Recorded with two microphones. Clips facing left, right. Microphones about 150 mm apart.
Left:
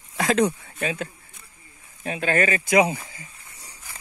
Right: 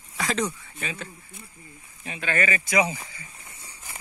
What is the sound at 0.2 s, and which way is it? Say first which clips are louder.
Speech: left 7 dB; 55° left (ahead or behind).